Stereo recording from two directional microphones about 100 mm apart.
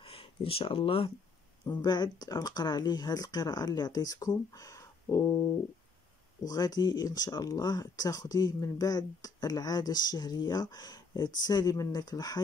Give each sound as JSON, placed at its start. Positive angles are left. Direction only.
{"t": 0.0, "sound": "speech", "side_deg": 65}
{"t": 1.7, "sound": "speech", "side_deg": 45}